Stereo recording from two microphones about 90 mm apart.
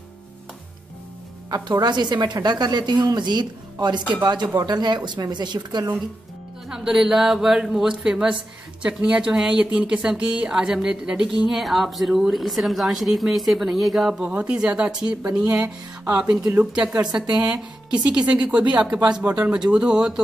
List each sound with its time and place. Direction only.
1.5 s speech: 50° right (ahead or behind)
6.7 s a woman's voice: 10° right (ahead or behind)
18.2 s speech: 10° right (ahead or behind)